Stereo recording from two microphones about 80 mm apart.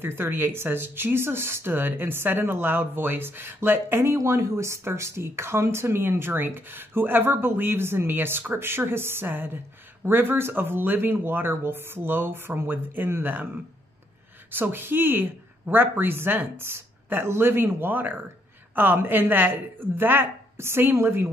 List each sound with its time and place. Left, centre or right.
0.0 s speech: right
14.5 s speech: right